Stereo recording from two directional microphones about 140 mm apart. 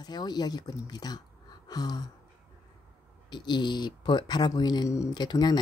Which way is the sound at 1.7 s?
30° left (ahead or behind).